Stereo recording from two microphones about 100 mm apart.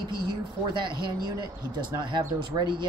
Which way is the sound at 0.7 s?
50° right (ahead or behind).